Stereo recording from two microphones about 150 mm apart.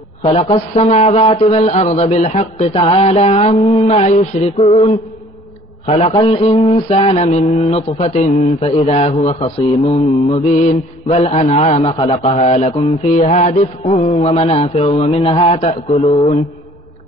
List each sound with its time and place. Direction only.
0.2 s mantra: 40° left (ahead or behind)
4.0 s mantra: 50° left (ahead or behind)